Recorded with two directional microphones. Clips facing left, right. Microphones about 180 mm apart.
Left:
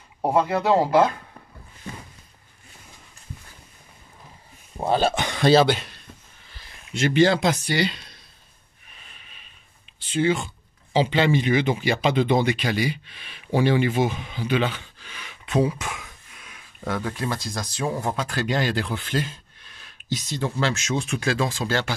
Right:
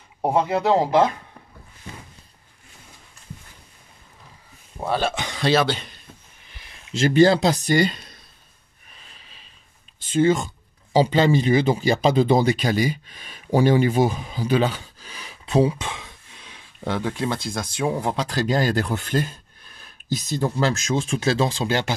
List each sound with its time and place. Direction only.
0.2 s speech: 20° right (ahead or behind)
4.8 s speech: 25° left (ahead or behind)
5.1 s speech: 55° left (ahead or behind)
5.7 s speech: 5° left (ahead or behind)
6.5 s a sound: 25° right (ahead or behind)
7.3 s speech: 35° right (ahead or behind); by 8.2 s 50° right (ahead or behind)
9.2 s a sound: 30° right (ahead or behind)
9.9 s speech: 45° right (ahead or behind); by 17.6 s 25° right (ahead or behind)
18.1 s speech: 35° right (ahead or behind)
20.3 s speech: 40° right (ahead or behind); by 21.9 s 20° right (ahead or behind)